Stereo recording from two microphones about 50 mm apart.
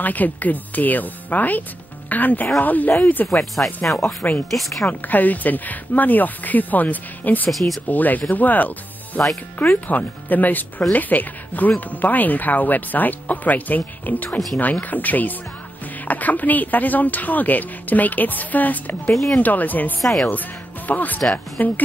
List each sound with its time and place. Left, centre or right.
0.0 s speech: left
3.5 s speech: centre
4.2 s speech: left
4.5 s speech: centre
4.8 s speech: left
7.5 s speech: centre
7.9 s speech: left
20.0 s speech: centre
20.2 s speech: left